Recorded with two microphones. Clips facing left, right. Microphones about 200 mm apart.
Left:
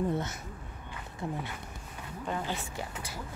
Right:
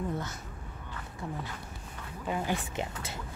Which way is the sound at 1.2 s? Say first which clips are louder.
Left 3 dB; 20° left (ahead or behind).